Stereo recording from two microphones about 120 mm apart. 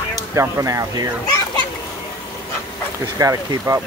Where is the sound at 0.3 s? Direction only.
25° right (ahead or behind).